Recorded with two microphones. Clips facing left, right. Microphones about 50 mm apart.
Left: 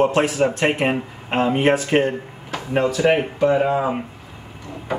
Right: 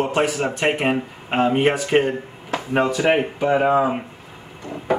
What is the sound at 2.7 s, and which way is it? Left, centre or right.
Speech, centre.